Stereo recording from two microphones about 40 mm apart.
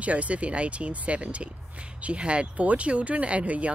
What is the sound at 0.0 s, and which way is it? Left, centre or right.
Speech, right.